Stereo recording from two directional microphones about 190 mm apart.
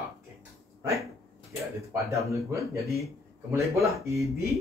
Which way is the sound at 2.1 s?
15° right (ahead or behind).